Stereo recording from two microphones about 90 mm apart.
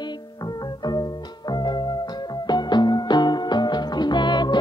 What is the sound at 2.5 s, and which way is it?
Music, 55° left (ahead or behind).